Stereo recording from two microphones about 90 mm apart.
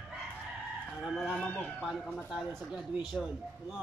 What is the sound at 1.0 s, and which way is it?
Speech, 5° left (ahead or behind).